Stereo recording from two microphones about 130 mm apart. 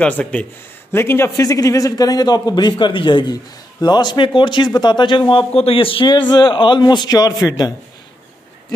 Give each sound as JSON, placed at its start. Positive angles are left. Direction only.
{"t": 0.0, "sound": "speech", "side_deg": 10}